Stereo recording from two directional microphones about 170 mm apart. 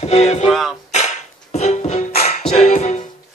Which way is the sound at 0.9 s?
40° left (ahead or behind).